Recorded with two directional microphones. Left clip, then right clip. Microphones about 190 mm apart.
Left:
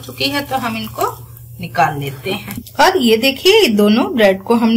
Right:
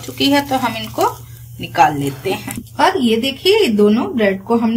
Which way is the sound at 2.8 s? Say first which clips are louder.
Left 3 dB; 45° left (ahead or behind).